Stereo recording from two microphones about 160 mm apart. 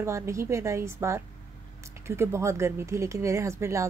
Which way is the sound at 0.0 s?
15° right (ahead or behind).